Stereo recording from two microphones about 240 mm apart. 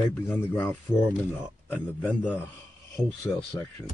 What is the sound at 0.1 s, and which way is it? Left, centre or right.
Mantra, centre.